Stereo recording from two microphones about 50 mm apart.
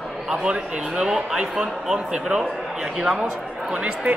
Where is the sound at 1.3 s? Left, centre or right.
Centre.